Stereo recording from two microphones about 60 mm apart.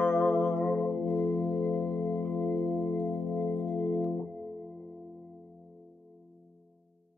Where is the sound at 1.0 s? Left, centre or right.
Centre.